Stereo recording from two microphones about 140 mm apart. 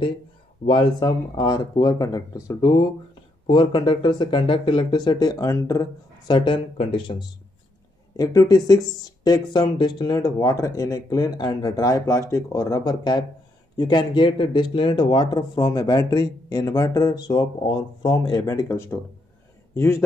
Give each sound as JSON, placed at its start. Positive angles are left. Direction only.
{"t": 0.7, "sound": "speech", "side_deg": 35}
{"t": 8.2, "sound": "a man's voice", "side_deg": 25}